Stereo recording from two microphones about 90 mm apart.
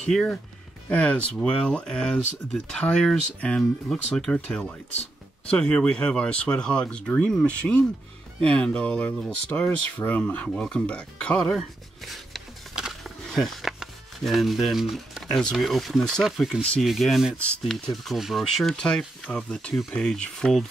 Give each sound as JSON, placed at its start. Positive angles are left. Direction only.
{"t": 0.0, "sound": "speech", "side_deg": 5}